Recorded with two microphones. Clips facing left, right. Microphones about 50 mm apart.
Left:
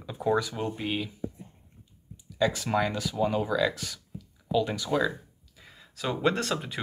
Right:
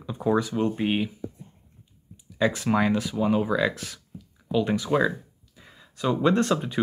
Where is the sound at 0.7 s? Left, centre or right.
Right.